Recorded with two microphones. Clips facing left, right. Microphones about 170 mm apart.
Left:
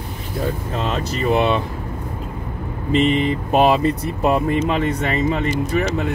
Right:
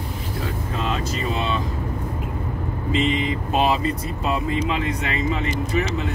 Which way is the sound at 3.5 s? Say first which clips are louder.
Left 6 dB; 60° left (ahead or behind).